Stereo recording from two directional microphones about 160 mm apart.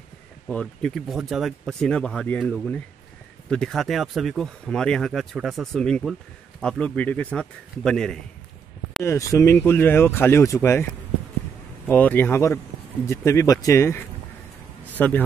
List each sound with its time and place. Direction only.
0.5 s speech: 5° left (ahead or behind)
9.0 s speech: 15° left (ahead or behind)
11.9 s speech: 10° left (ahead or behind)